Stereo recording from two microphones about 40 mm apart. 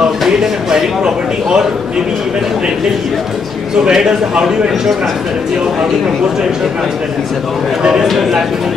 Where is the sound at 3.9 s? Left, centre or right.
Centre.